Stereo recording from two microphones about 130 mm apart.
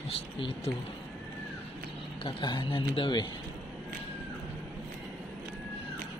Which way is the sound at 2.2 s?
35° left (ahead or behind).